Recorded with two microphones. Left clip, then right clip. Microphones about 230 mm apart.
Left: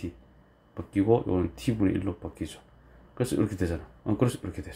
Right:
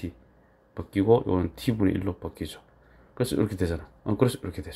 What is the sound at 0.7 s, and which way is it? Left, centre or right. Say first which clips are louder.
Speech: right 3 dB; centre.